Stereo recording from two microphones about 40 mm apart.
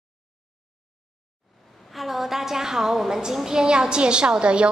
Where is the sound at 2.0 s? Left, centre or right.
Centre.